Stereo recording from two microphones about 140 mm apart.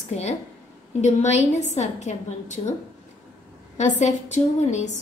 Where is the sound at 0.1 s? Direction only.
50° left (ahead or behind).